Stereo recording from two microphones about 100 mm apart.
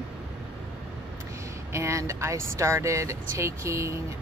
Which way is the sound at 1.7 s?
30° right (ahead or behind).